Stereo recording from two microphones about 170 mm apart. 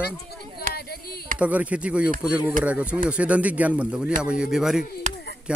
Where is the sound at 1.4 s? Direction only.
10° right (ahead or behind).